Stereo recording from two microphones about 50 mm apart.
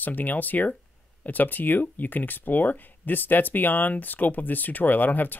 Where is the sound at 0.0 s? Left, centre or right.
Left.